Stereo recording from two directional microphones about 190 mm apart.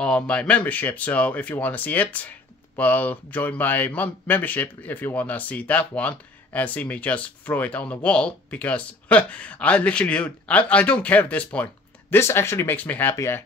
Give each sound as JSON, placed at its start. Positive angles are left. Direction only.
{"t": 0.0, "sound": "speech", "side_deg": 5}